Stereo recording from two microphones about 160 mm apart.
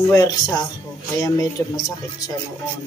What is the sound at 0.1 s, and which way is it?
Speech, 20° left (ahead or behind).